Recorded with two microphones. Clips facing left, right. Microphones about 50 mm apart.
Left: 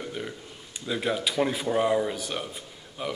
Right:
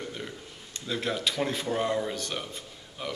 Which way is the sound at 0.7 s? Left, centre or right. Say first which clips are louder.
Left 3 dB; centre.